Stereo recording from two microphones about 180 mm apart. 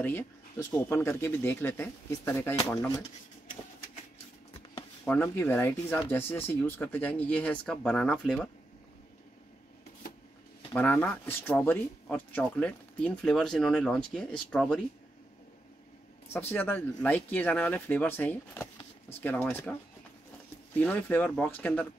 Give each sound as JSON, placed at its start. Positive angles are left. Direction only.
{"t": 0.0, "sound": "speech", "side_deg": 10}
{"t": 5.0, "sound": "speech", "side_deg": 10}
{"t": 10.7, "sound": "speech", "side_deg": 10}
{"t": 16.3, "sound": "speech", "side_deg": 10}
{"t": 20.7, "sound": "speech", "side_deg": 10}